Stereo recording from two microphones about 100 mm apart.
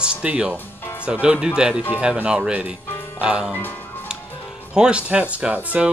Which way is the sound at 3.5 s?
20° left (ahead or behind).